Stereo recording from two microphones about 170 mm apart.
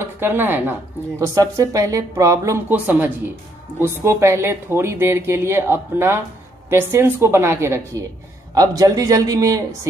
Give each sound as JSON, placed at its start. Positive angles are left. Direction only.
{"t": 0.0, "sound": "a man's voice", "side_deg": -10}